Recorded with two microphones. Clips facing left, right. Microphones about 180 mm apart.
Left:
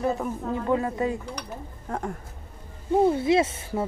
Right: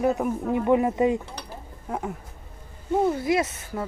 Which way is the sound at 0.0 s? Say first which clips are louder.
Right 3 dB; 15° right (ahead or behind).